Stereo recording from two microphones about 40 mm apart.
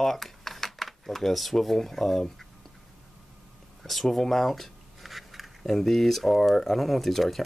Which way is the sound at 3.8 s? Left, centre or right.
Centre.